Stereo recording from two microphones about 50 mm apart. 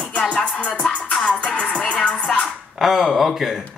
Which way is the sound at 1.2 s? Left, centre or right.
Left.